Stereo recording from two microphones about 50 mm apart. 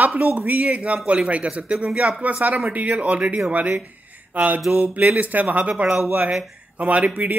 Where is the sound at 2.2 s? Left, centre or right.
Right.